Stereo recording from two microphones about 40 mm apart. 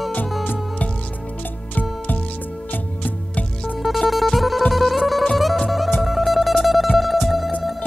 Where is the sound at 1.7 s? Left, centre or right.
Left.